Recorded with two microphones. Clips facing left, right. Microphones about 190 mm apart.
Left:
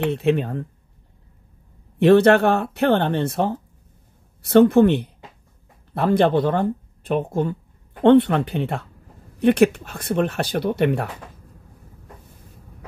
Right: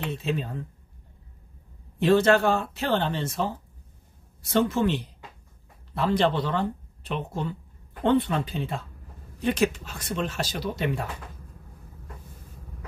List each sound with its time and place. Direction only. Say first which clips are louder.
0.0 s speech: left 9 dB; 65° left (ahead or behind)
2.0 s speech: left 6 dB; 65° left (ahead or behind)
8.0 s speech: left 9 dB; 70° left (ahead or behind)